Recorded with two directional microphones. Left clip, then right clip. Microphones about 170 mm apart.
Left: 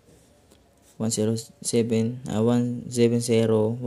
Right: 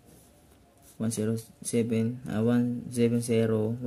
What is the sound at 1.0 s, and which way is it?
Speech, 20° left (ahead or behind).